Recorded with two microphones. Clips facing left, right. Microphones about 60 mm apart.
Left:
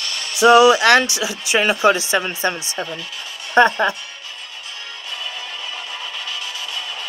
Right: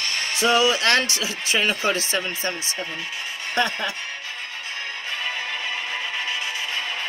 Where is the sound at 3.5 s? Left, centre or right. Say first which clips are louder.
Left 10 dB; left.